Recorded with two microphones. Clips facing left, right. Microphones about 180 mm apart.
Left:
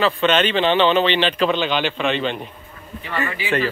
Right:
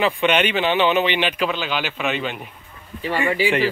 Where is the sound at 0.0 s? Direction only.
15° right (ahead or behind).